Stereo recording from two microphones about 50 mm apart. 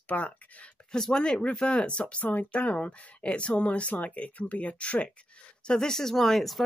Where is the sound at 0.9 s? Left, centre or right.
Centre.